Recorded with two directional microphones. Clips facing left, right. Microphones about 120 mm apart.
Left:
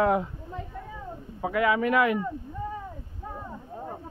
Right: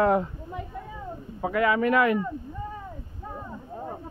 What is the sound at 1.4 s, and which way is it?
Speech, 5° left (ahead or behind).